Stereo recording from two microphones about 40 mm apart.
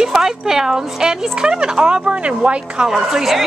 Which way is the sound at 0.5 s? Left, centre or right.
Centre.